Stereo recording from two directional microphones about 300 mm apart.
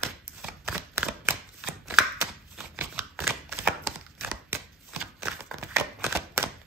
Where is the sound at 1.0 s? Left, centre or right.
Centre.